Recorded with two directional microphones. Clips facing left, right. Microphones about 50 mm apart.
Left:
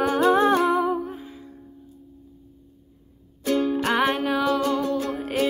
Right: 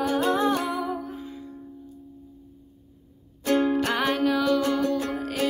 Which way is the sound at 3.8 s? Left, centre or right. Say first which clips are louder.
Left 2 dB; centre.